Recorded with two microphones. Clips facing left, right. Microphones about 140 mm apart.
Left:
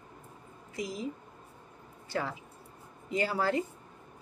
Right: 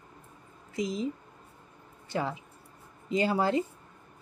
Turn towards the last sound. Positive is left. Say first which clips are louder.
# right 3 dB
turn(degrees=-20)  # may be behind; listen again after turning